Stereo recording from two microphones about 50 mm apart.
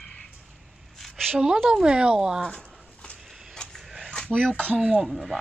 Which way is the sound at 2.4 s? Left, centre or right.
Left.